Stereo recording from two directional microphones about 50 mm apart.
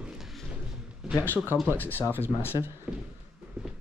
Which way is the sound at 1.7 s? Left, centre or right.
Left.